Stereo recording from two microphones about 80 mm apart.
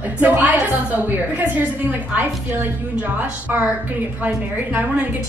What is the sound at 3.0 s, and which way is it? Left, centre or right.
A woman's voice, right.